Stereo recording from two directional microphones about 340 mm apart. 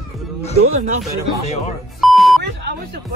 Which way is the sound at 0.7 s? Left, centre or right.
Right.